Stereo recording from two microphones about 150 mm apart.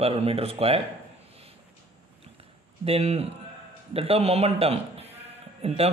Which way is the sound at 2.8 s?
40° right (ahead or behind).